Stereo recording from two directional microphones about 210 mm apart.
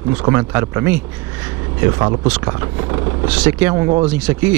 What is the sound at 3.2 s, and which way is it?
Speech, 5° right (ahead or behind).